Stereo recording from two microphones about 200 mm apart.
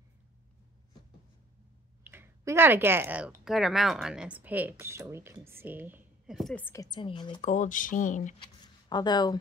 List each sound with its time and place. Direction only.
2.0 s speech: 10° right (ahead or behind); by 7.4 s 25° left (ahead or behind)
7.4 s speech: 40° left (ahead or behind)
8.8 s speech: 20° left (ahead or behind)